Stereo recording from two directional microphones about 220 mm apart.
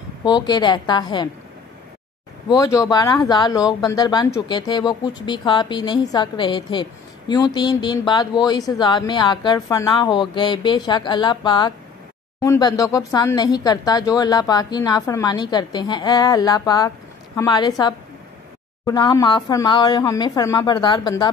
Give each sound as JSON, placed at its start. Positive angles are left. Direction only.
{"t": 0.2, "sound": "speech", "side_deg": 20}
{"t": 2.4, "sound": "speech", "side_deg": 15}